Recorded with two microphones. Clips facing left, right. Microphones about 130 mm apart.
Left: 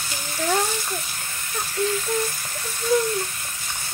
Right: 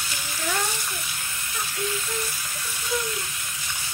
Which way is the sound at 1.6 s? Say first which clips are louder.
Left 6 dB; 45° left (ahead or behind).